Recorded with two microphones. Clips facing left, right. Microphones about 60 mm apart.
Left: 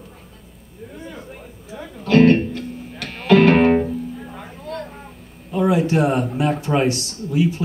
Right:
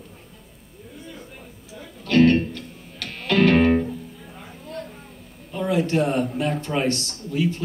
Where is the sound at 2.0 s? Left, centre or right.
Centre.